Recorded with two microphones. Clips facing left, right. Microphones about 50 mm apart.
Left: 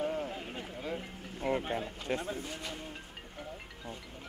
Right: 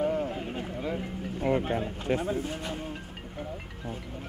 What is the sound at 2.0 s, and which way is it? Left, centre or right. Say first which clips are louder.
Speech: right 8 dB; centre.